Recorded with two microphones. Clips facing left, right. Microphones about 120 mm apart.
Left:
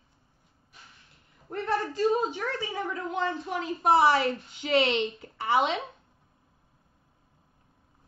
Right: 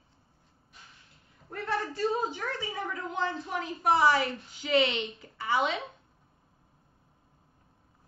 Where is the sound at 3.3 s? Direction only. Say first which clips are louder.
Left 3 dB; 25° left (ahead or behind).